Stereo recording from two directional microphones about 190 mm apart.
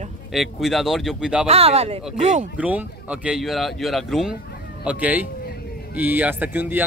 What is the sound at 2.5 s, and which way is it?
Speech, 5° right (ahead or behind).